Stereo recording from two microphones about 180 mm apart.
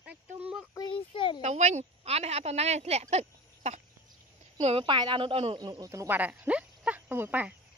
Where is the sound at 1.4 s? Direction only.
40° right (ahead or behind).